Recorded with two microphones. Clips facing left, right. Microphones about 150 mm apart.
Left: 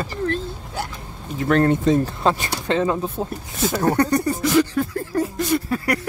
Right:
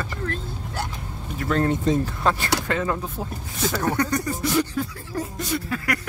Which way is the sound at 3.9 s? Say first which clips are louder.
Left 7 dB; 30° left (ahead or behind).